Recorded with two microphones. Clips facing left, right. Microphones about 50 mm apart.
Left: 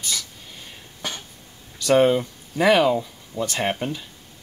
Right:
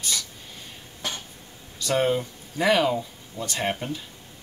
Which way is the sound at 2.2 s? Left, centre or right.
Left.